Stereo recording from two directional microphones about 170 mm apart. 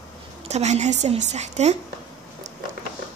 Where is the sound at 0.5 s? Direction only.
40° right (ahead or behind).